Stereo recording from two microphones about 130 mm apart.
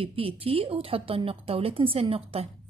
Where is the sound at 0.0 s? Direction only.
45° right (ahead or behind).